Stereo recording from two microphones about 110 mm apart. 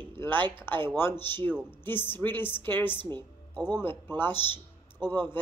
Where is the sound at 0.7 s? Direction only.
20° left (ahead or behind).